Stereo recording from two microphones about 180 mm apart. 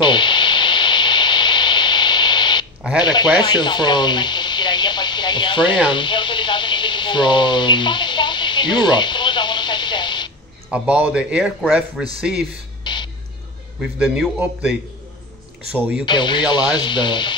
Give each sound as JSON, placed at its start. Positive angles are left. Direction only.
{"t": 0.0, "sound": "radio", "side_deg": 25}
{"t": 3.0, "sound": "speech", "side_deg": 25}
{"t": 10.7, "sound": "a man's voice", "side_deg": -5}
{"t": 12.8, "sound": "music", "side_deg": 25}
{"t": 13.7, "sound": "a man's voice", "side_deg": -5}
{"t": 15.7, "sound": "a man's voice", "side_deg": -10}
{"t": 16.1, "sound": "speech", "side_deg": 25}